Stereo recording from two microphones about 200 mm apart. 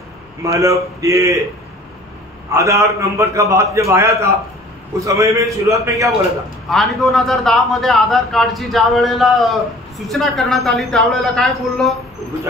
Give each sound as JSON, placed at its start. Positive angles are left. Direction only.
{"t": 0.4, "sound": "a man's voice", "side_deg": -15}
{"t": 2.5, "sound": "a man's voice", "side_deg": -15}
{"t": 6.7, "sound": "a man's voice", "side_deg": 0}